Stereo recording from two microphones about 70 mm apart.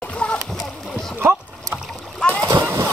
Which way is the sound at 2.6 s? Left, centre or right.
Right.